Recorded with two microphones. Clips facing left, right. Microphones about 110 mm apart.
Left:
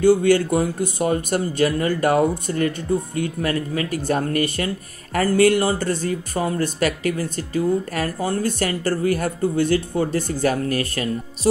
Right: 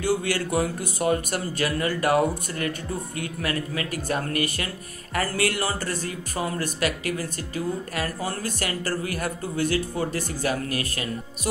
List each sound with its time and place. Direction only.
0.0 s speech: 25° left (ahead or behind)